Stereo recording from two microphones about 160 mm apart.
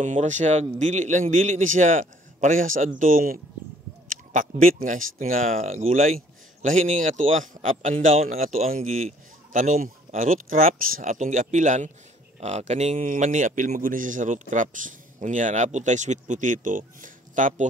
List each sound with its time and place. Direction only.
0.0 s speech: 50° right (ahead or behind)